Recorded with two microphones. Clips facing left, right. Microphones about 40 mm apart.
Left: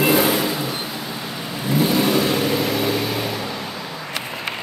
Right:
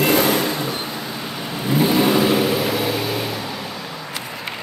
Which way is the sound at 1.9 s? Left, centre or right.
Centre.